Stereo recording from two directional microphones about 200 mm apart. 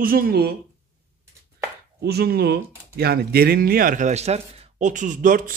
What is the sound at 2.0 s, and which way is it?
Speech, 50° right (ahead or behind).